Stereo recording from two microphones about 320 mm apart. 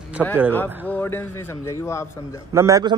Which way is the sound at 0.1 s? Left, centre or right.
Centre.